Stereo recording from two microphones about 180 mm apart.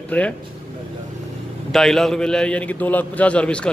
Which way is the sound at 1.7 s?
Centre (ahead or behind).